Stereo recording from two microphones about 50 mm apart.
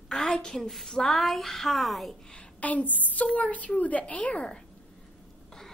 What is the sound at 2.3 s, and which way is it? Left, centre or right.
A woman's voice, left.